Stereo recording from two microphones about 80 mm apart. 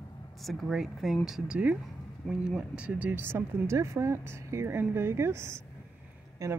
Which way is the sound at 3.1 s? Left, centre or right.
Right.